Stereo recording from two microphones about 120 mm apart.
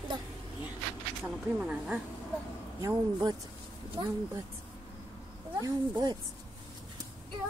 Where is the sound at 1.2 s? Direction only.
10° right (ahead or behind).